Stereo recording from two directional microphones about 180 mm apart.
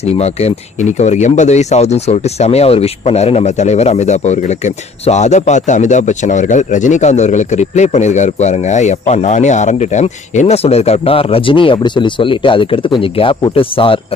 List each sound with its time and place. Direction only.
0.1 s speech: 35° left (ahead or behind)